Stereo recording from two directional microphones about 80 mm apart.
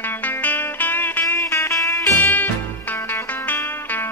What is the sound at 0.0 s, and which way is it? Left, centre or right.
Music, left.